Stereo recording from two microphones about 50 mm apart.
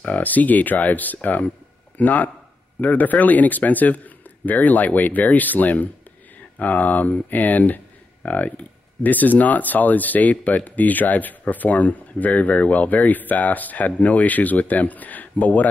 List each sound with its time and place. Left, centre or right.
0.0 s speech: left